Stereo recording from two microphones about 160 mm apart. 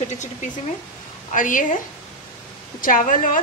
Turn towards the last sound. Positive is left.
turn(degrees=55)  # may be behind; listen again after turning